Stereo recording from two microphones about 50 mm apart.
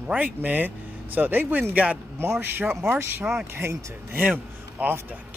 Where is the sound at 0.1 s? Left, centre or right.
Right.